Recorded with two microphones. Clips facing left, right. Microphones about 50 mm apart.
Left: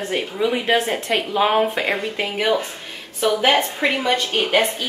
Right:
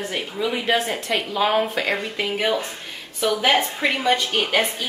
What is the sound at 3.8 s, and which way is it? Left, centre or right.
Speech, centre.